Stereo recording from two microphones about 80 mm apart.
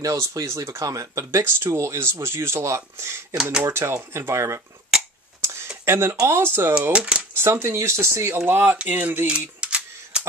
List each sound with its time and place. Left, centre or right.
0.0 s speech: right
1.4 s speech: right
4.9 s a sound: centre
5.4 s a sound: right
5.9 s speech: right
6.9 s speech: centre
7.3 s speech: right
9.3 s camera: centre